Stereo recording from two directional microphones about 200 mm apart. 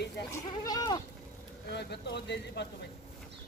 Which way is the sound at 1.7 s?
55° left (ahead or behind).